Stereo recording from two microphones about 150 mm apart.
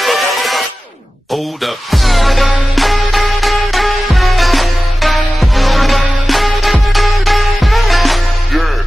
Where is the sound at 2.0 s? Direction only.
Centre (ahead or behind).